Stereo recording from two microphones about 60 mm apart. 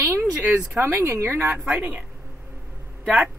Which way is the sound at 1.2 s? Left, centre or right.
Right.